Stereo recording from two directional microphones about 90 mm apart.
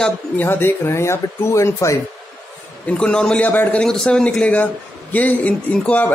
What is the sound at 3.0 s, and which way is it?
Speech, 10° left (ahead or behind).